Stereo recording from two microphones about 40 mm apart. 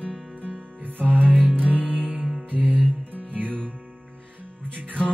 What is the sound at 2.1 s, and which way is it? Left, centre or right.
Music, centre.